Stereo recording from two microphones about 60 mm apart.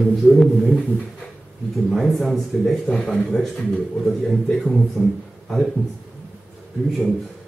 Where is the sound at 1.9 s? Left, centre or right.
Centre.